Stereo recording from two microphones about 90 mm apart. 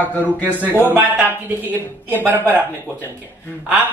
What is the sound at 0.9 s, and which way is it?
A woman's voice, 15° right (ahead or behind).